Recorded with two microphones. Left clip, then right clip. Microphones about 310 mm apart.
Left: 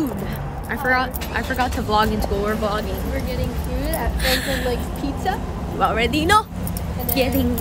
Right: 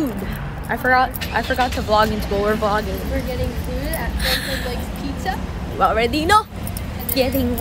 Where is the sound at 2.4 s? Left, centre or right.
Centre.